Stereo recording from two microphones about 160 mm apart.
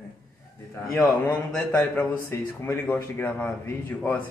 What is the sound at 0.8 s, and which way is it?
A man's voice, 10° left (ahead or behind).